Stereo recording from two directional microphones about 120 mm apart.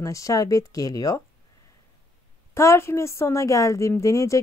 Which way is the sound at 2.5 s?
20° left (ahead or behind).